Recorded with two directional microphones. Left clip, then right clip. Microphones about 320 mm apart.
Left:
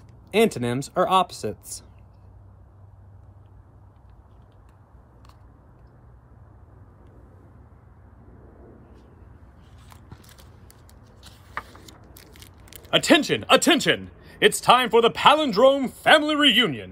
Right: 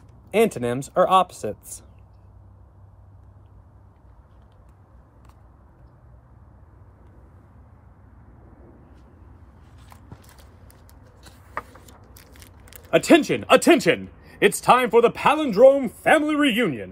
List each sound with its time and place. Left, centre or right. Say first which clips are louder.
0.4 s a man's voice: right 1 dB; centre
11.8 s a sound: left 1 dB; centre
14.0 s a man's voice: even; centre